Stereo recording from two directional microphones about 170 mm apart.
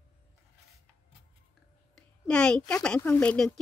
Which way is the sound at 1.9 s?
5° left (ahead or behind).